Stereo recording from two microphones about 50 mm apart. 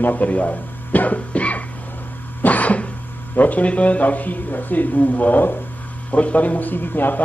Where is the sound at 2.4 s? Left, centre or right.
Left.